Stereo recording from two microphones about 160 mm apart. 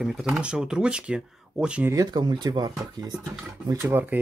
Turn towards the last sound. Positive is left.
turn(degrees=-10)  # may be behind; listen again after turning